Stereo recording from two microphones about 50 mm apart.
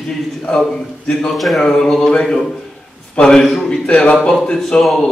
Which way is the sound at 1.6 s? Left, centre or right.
Centre.